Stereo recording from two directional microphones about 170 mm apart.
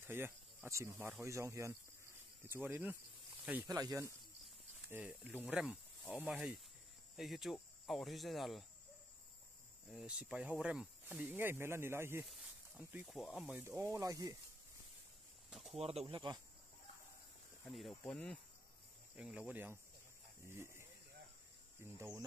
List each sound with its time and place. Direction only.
0.0 s speech: 15° right (ahead or behind)
3.6 s speech: 20° right (ahead or behind)
4.8 s speech: 10° right (ahead or behind)
9.8 s speech: 5° right (ahead or behind)
13.6 s speech: 15° right (ahead or behind)
15.5 s a sound: centre (ahead or behind)
15.8 s speech: 35° right (ahead or behind)
17.6 s speech: centre (ahead or behind); by 20.8 s 15° right (ahead or behind)
21.9 s speech: 15° right (ahead or behind)